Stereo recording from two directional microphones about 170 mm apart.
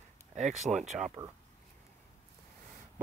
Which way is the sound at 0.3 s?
45° right (ahead or behind).